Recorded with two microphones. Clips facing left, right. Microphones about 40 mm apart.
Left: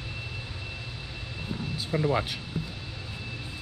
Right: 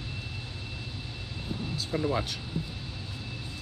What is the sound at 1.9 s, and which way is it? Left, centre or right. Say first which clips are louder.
Speech: left 3 dB; left.